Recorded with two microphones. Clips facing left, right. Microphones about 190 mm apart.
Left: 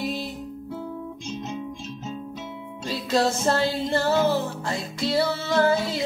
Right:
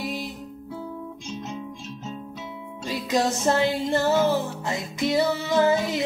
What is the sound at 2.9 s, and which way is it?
Music, 15° right (ahead or behind).